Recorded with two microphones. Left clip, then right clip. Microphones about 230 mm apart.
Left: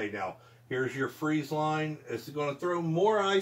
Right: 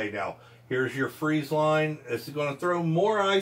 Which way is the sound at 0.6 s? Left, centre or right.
Centre.